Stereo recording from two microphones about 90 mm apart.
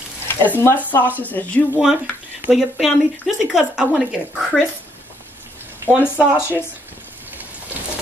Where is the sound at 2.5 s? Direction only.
5° right (ahead or behind).